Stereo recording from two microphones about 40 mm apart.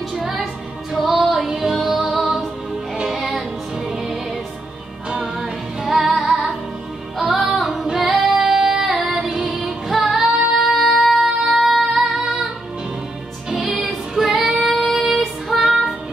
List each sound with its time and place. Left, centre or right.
0.1 s music: centre
5.2 s music: centre
5.9 s female singing: centre
7.2 s music: centre
7.8 s female singing: centre
8.5 s music: centre
9.0 s female singing: centre
9.7 s music: centre
10.1 s child singing: centre
13.6 s music: centre
14.1 s female singing: centre
14.5 s child singing: centre
14.8 s female singing: centre